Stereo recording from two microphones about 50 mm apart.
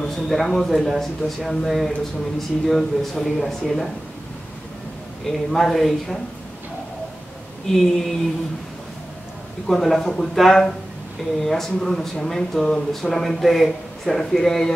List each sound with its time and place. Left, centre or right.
0.0 s speech: centre
5.2 s speech: centre
7.6 s speech: centre
9.7 s speech: centre